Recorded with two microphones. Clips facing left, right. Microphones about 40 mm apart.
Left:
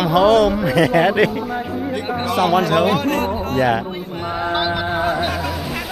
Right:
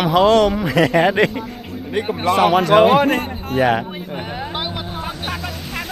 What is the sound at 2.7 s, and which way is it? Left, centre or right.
Speech, right.